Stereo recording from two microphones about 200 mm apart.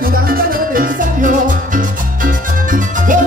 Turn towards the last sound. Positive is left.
turn(degrees=-40)  # may be behind; listen again after turning